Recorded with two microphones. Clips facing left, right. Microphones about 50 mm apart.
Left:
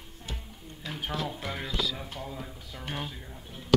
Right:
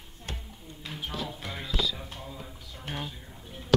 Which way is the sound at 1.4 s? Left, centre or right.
Centre.